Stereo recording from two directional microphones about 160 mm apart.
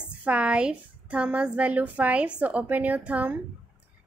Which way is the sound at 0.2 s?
5° right (ahead or behind).